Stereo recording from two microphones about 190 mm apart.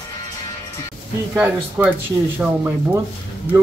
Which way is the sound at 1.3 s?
10° right (ahead or behind).